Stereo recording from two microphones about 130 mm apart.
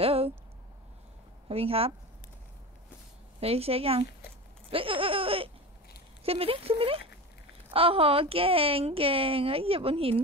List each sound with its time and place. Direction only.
0.0 s a sound: 50° right (ahead or behind)
1.5 s a woman's voice: 50° right (ahead or behind)
3.3 s a woman's voice: 50° right (ahead or behind)
4.6 s baby laughter: 45° right (ahead or behind)
6.2 s a woman's voice: 45° right (ahead or behind)